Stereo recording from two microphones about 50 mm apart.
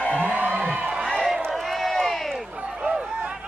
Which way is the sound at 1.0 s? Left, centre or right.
Centre.